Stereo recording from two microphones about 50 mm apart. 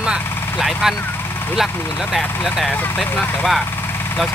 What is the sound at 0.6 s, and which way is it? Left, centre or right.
Speech, centre.